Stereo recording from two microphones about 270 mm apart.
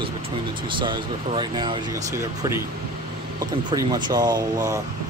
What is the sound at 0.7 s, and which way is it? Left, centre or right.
Speech, centre.